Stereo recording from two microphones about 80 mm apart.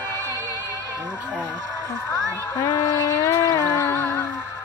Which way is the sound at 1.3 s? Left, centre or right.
Left.